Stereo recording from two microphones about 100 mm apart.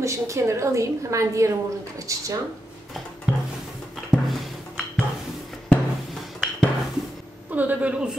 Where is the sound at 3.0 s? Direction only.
Centre (ahead or behind).